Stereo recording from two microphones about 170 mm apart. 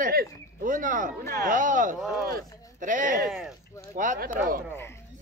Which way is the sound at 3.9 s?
50° right (ahead or behind).